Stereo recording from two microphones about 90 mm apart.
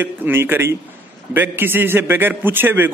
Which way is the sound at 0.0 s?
25° right (ahead or behind).